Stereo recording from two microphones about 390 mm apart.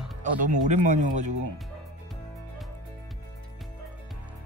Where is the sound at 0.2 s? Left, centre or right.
Centre.